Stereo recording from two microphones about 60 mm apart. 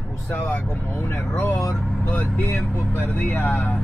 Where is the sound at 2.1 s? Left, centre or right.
Left.